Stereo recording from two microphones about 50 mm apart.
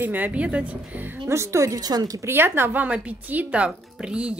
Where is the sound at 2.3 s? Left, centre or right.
Right.